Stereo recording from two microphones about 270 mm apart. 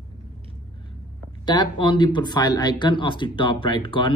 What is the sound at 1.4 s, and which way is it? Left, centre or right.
Speech, centre.